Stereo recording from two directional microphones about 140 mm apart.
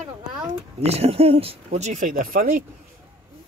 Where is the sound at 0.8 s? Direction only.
50° right (ahead or behind); by 2.6 s 90° right.